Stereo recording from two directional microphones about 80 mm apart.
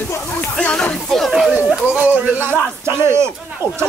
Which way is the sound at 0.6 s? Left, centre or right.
Centre.